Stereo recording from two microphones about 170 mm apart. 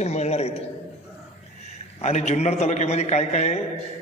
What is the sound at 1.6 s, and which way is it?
A man's voice, 40° left (ahead or behind).